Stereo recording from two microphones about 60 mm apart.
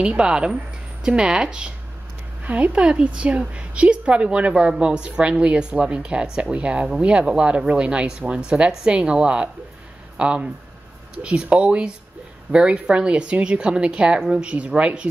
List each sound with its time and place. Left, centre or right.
0.0 s a woman's voice: centre
2.4 s a woman's voice: right